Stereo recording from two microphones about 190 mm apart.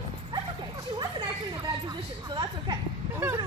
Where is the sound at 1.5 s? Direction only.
25° right (ahead or behind).